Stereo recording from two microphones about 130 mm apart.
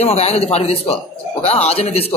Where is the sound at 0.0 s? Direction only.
55° left (ahead or behind).